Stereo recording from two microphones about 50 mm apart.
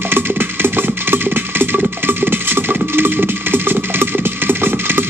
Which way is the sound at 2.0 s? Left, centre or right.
Right.